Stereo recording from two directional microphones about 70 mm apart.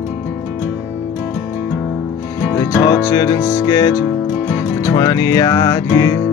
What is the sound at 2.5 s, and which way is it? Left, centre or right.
Music, left.